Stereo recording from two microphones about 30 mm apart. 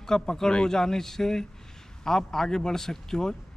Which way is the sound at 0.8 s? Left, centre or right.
Centre.